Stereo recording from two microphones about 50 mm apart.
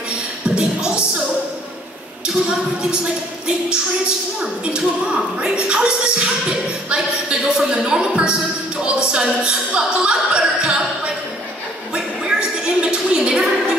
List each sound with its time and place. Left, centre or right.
0.6 s music: right
2.4 s speech: centre
4.4 s speech: centre
11.9 s a sound: right